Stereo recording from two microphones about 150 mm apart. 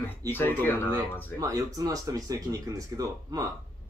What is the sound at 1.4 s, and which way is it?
Speech, 25° right (ahead or behind).